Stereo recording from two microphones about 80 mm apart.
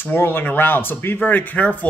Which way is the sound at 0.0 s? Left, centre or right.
Left.